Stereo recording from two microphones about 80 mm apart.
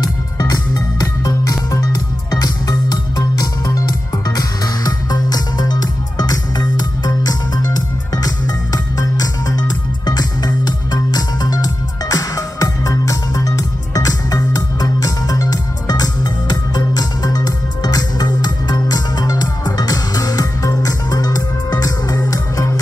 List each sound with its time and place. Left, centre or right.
0.0 s music: left
10.0 s music: left